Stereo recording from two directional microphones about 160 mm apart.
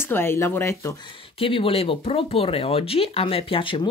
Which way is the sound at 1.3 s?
35° left (ahead or behind).